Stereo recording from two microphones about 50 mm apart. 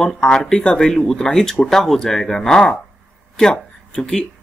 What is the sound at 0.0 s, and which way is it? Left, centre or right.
Speech, centre.